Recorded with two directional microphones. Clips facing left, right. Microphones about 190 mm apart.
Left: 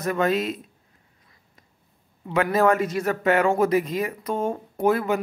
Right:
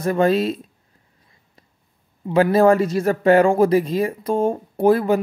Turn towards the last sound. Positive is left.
turn(degrees=-30)  # may be behind; listen again after turning